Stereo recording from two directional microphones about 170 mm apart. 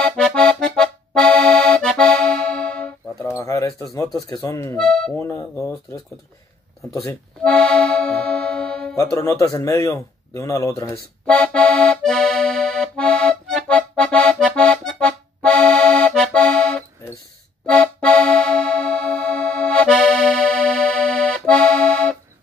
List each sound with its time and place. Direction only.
0.0 s accordion: 5° left (ahead or behind)
3.2 s a sound: 15° left (ahead or behind)
3.9 s speech: 20° left (ahead or behind)
4.7 s speech: 5° left (ahead or behind)
5.2 s speech: 15° left (ahead or behind)
7.4 s accordion: 5° left (ahead or behind)
8.9 s speech: 20° left (ahead or behind)
11.2 s accordion: 5° left (ahead or behind)
17.6 s music: 5° left (ahead or behind)